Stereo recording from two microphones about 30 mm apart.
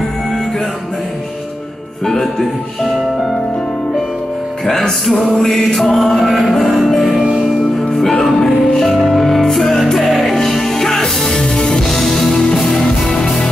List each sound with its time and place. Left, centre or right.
5.8 s mantra: centre
6.9 s music: centre
8.5 s music: centre
10.3 s music: centre
11.9 s music: centre